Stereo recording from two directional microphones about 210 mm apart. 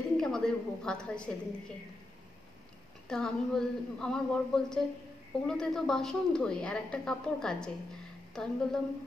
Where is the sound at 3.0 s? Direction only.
5° left (ahead or behind).